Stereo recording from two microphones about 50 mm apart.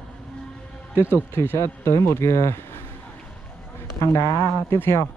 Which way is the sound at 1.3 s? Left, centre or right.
Left.